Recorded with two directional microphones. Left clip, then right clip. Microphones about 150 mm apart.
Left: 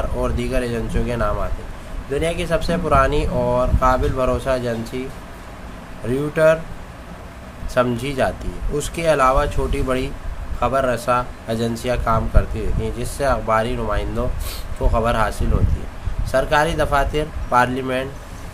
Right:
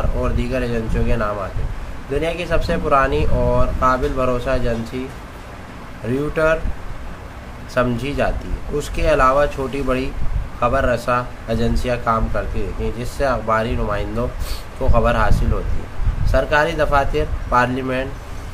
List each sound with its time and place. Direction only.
0.2 s a man's voice: 25° left (ahead or behind)
6.0 s a man's voice: 20° left (ahead or behind)
7.7 s a man's voice: 20° left (ahead or behind)